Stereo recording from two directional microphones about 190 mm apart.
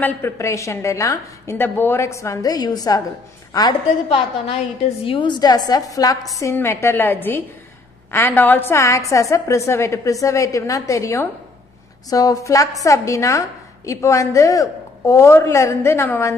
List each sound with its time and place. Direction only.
0.0 s a woman's voice: 15° left (ahead or behind)